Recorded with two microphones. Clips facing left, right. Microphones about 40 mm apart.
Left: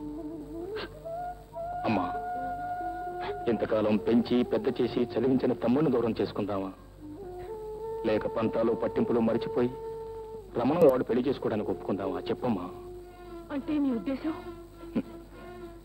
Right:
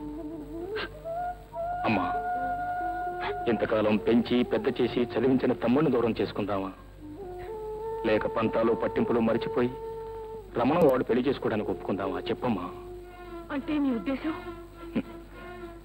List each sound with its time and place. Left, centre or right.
1.8 s speech: right